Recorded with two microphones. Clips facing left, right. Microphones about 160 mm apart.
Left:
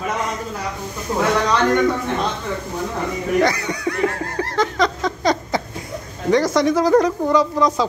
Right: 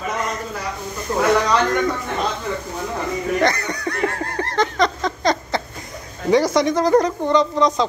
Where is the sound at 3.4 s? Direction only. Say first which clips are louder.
Left 4 dB; 10° left (ahead or behind).